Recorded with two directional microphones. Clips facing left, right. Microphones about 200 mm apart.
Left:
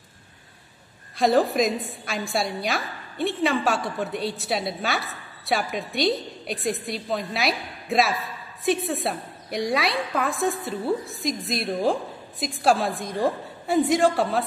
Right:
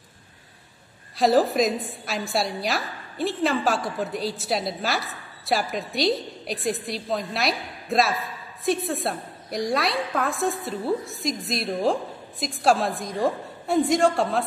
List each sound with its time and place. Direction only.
1.1 s a woman's voice: centre (ahead or behind)